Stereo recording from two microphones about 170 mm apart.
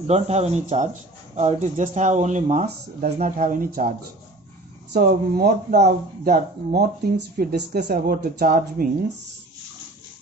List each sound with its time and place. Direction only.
0.0 s speech: 40° right (ahead or behind)
4.9 s speech: 65° right (ahead or behind)